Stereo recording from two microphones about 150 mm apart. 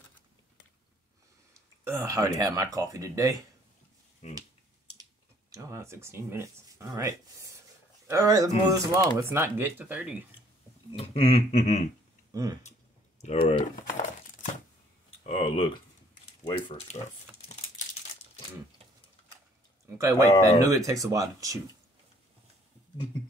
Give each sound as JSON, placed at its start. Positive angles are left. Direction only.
{"t": 1.5, "sound": "speech", "side_deg": -20}
{"t": 4.2, "sound": "speech", "side_deg": 50}
{"t": 5.5, "sound": "speech", "side_deg": -20}
{"t": 10.9, "sound": "speech", "side_deg": 45}
{"t": 12.3, "sound": "speech", "side_deg": -25}
{"t": 13.4, "sound": "speech", "side_deg": 35}
{"t": 15.2, "sound": "speech", "side_deg": 35}
{"t": 17.5, "sound": "crumpling", "side_deg": 45}
{"t": 20.0, "sound": "speech", "side_deg": -20}